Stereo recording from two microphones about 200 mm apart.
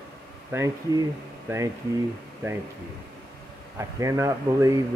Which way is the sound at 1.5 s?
10° right (ahead or behind).